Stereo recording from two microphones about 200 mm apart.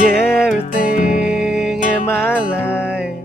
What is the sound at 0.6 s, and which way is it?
Music, 40° left (ahead or behind).